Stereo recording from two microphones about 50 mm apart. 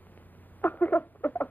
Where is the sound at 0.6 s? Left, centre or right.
Left.